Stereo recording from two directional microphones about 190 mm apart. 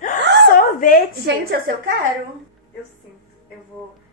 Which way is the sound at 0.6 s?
45° left (ahead or behind).